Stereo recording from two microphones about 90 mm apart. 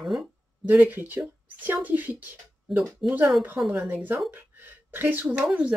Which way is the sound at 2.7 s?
Centre (ahead or behind).